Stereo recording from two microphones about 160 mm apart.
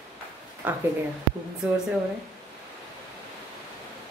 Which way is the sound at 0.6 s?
10° right (ahead or behind).